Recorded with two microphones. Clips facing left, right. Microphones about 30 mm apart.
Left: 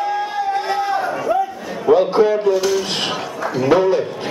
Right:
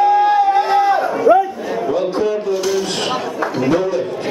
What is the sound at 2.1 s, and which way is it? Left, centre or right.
Speech, left.